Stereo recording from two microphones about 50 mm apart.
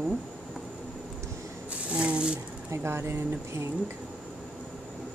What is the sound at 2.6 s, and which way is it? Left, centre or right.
Speech, right.